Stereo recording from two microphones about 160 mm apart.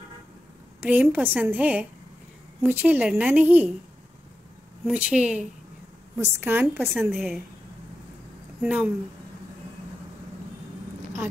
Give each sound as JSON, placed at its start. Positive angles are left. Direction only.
{"t": 0.7, "sound": "a woman's voice", "side_deg": -10}
{"t": 4.9, "sound": "a woman's voice", "side_deg": -5}
{"t": 6.1, "sound": "a woman's voice", "side_deg": -15}
{"t": 7.1, "sound": "a woman's voice", "side_deg": 0}
{"t": 8.6, "sound": "a woman's voice", "side_deg": -10}